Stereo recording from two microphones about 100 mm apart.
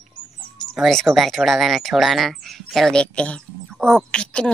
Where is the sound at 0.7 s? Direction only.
Centre (ahead or behind).